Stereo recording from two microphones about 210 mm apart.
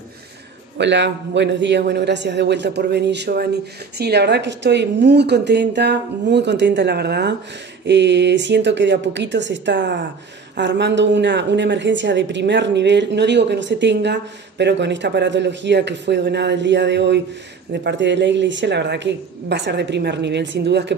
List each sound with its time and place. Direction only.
0.7 s a woman's voice: 55° right (ahead or behind)